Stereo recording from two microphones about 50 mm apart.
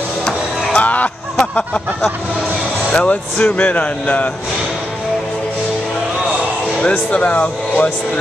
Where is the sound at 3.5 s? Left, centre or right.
Left.